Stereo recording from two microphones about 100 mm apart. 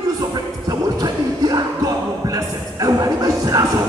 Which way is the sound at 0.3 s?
40° right (ahead or behind).